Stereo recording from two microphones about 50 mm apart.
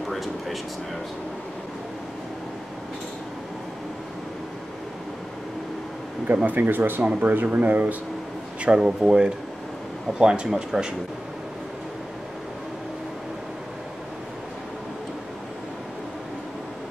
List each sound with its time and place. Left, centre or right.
0.0 s a sound: centre
6.2 s speech: right
8.6 s speech: centre